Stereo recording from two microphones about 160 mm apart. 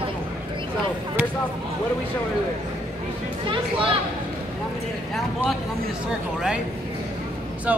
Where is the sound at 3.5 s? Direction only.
35° right (ahead or behind).